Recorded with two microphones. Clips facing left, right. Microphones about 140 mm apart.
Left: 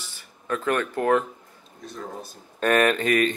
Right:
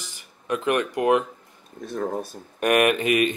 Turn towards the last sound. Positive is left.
turn(degrees=-10)  # may be behind; listen again after turning